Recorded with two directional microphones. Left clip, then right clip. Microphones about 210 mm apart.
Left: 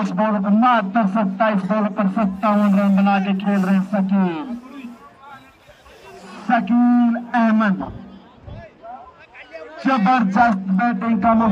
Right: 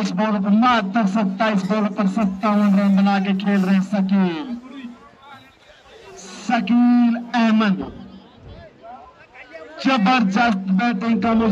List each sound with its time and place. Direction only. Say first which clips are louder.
0.0 s a man's voice: left 2 dB; 20° right (ahead or behind)
6.2 s a man's voice: left 2 dB; 25° right (ahead or behind)
9.8 s a man's voice: left 1 dB; 20° right (ahead or behind)